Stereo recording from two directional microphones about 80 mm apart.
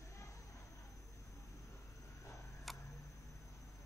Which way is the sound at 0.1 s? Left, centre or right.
Left.